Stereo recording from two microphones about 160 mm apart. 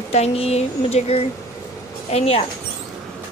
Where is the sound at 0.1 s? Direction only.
40° left (ahead or behind).